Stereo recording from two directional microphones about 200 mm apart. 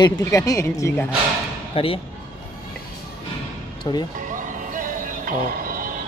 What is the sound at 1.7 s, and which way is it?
Speech, 30° left (ahead or behind).